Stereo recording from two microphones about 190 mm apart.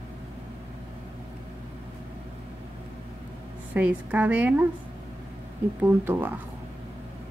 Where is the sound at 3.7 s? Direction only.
10° right (ahead or behind).